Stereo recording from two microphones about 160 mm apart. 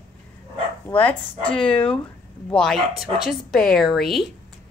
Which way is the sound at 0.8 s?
10° left (ahead or behind).